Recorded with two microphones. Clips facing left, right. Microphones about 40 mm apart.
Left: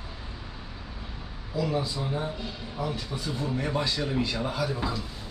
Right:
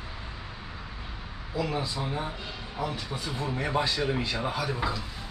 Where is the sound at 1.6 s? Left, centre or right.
Centre.